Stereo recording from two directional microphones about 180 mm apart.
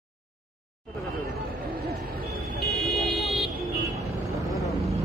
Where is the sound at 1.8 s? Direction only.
55° right (ahead or behind).